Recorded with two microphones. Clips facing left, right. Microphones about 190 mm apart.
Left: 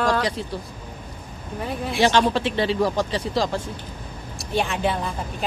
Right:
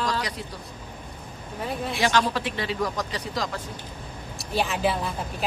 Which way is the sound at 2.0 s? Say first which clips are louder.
Left 6 dB; 30° left (ahead or behind).